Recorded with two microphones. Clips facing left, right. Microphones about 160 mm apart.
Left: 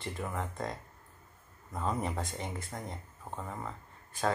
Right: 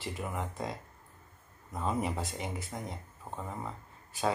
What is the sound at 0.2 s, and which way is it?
Speech, 10° right (ahead or behind).